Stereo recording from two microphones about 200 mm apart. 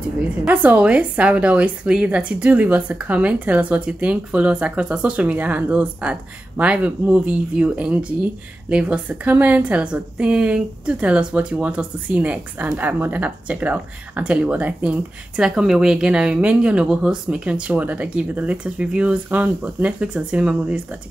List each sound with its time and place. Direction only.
0.2 s a woman's voice: 5° right (ahead or behind)